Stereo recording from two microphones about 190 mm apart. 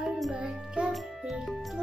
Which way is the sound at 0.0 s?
5° right (ahead or behind).